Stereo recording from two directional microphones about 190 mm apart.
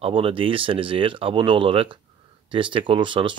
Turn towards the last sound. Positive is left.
turn(degrees=-25)  # may be behind; listen again after turning